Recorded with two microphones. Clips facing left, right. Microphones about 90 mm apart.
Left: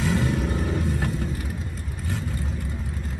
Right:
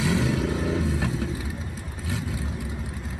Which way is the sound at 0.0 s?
90° right.